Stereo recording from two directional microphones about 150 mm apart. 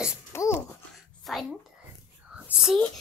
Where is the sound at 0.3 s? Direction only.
20° left (ahead or behind).